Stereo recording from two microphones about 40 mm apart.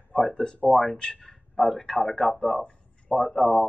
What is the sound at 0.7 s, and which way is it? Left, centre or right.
Speech, centre.